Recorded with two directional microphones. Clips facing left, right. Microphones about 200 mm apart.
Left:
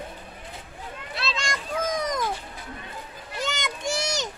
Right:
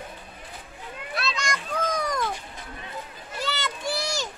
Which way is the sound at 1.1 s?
25° left (ahead or behind).